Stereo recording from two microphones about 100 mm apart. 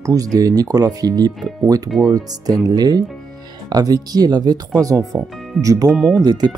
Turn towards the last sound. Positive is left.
turn(degrees=-45)  # may be behind; listen again after turning